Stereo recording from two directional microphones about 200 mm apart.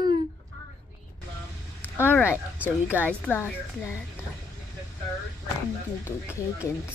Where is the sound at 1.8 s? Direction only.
10° left (ahead or behind).